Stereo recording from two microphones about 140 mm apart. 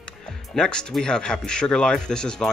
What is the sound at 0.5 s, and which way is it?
Speech, 5° left (ahead or behind).